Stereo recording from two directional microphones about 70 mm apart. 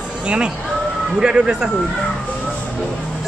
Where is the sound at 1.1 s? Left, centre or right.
Centre.